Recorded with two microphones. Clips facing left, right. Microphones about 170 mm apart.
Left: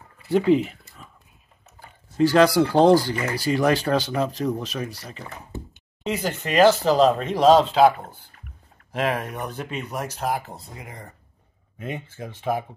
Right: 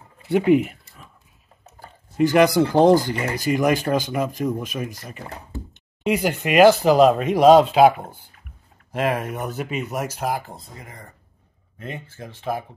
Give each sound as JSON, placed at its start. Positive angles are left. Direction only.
{"t": 0.3, "sound": "a sound", "side_deg": -10}
{"t": 2.1, "sound": "speech", "side_deg": -15}
{"t": 6.0, "sound": "speech", "side_deg": -10}
{"t": 8.9, "sound": "speech", "side_deg": -5}